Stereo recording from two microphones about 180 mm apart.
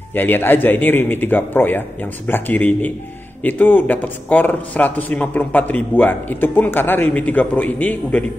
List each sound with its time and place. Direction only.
0.1 s speech: 10° left (ahead or behind)